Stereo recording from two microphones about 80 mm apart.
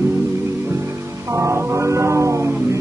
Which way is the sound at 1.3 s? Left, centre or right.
Right.